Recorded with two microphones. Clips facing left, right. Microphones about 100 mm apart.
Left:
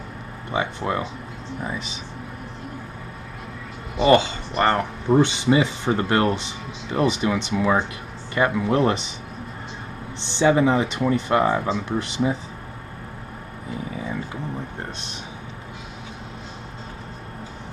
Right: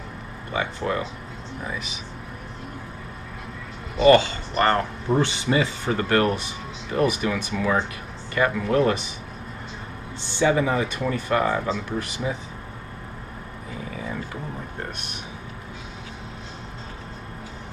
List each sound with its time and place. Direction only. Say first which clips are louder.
0.5 s speech: left 1 dB; 25° left (ahead or behind)
4.0 s speech: right 1 dB; 20° left (ahead or behind)
10.2 s speech: left 3 dB; 25° left (ahead or behind)